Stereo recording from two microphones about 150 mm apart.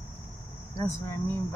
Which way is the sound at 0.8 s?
20° left (ahead or behind).